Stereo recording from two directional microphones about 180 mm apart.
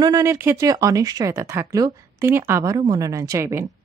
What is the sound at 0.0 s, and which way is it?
Speech, 15° right (ahead or behind).